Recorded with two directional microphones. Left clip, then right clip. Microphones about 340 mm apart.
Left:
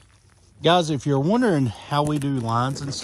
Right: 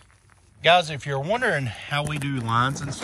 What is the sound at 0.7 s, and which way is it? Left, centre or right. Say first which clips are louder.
Speech: right 1 dB; centre.